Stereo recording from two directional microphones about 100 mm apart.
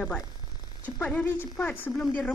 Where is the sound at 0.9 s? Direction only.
15° left (ahead or behind).